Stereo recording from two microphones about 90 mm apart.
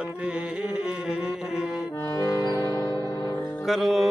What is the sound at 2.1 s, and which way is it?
Music, 35° left (ahead or behind).